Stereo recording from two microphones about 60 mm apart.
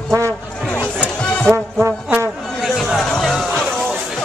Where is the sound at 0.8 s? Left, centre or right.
Left.